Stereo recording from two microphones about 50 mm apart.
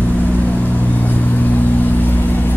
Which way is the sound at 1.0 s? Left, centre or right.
Left.